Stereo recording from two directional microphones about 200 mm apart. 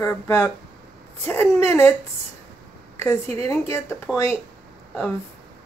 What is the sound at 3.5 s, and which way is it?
Speech, 15° left (ahead or behind).